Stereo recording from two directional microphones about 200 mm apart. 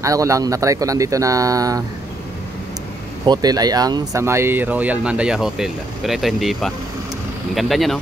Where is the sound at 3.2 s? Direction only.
20° right (ahead or behind).